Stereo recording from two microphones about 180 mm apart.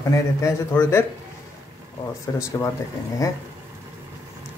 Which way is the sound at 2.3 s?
20° left (ahead or behind).